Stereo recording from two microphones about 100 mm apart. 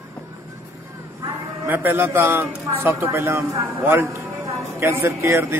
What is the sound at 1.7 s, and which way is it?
Speech, 20° right (ahead or behind).